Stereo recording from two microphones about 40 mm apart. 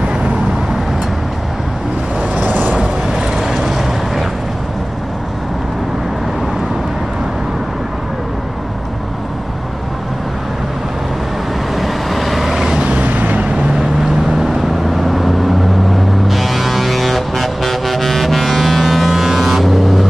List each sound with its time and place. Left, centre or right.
2.3 s vehicle: right
2.8 s vehicle: centre
11.7 s vehicle: centre
13.0 s vehicle: right
13.7 s vehicle: centre